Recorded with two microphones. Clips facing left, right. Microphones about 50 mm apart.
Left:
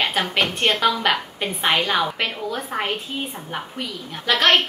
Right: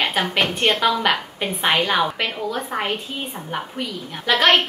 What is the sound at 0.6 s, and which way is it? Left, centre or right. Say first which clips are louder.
A woman's voice: right 1 dB; centre.